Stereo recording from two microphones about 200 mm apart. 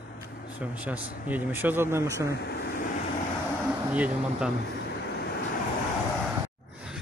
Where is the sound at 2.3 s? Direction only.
50° left (ahead or behind).